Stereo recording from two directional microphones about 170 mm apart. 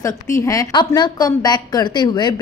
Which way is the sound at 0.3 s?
20° left (ahead or behind).